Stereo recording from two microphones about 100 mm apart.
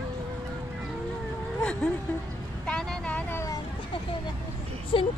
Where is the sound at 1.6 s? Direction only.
10° left (ahead or behind).